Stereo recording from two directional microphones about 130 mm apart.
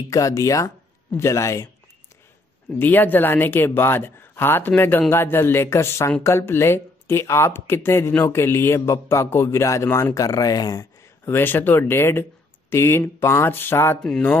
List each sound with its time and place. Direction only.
0.1 s speech: 25° left (ahead or behind)
2.8 s speech: 15° left (ahead or behind)